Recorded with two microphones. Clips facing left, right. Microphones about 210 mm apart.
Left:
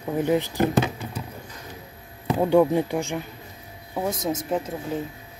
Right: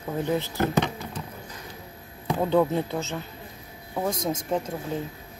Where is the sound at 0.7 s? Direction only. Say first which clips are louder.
Left 2 dB; 5° left (ahead or behind).